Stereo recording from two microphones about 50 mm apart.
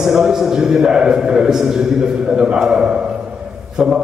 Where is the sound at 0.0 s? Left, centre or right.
Centre.